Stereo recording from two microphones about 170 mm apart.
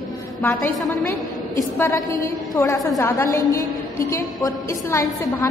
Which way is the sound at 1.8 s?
20° left (ahead or behind).